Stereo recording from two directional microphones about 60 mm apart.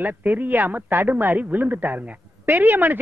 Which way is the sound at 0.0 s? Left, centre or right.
Right.